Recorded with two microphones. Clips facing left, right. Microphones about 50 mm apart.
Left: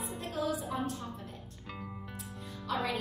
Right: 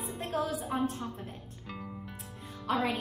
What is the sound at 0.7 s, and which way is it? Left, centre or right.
Speech, right.